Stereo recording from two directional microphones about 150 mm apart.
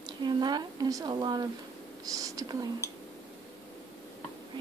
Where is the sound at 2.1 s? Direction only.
25° right (ahead or behind).